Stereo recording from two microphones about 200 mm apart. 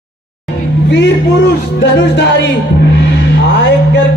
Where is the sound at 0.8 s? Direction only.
60° left (ahead or behind).